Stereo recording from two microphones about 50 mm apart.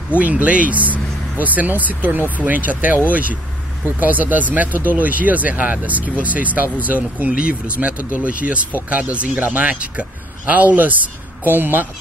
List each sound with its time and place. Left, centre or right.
0.2 s speech: right